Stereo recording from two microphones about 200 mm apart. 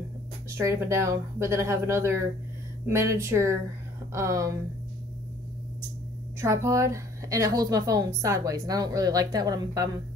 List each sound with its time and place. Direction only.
0.6 s a woman's voice: 15° right (ahead or behind)
6.4 s a woman's voice: 15° right (ahead or behind)